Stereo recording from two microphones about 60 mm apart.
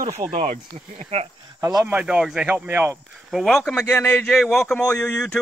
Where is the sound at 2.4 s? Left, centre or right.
Right.